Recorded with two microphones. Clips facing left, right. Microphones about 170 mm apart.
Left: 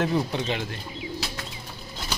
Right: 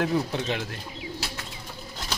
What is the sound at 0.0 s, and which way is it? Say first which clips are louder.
Speech: left 1 dB; centre (ahead or behind).